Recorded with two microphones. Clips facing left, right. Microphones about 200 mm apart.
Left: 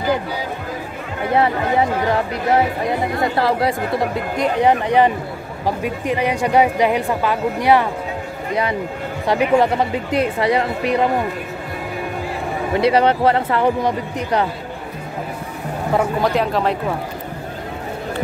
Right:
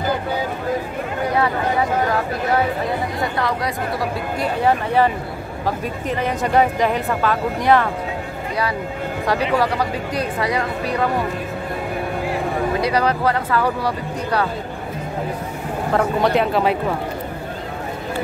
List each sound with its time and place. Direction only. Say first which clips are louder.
1.3 s speech: left 4 dB; 25° left (ahead or behind)
9.3 s speech: left 4 dB; 25° left (ahead or behind)
12.8 s speech: left 7 dB; 25° left (ahead or behind)
15.9 s speech: even; centre (ahead or behind)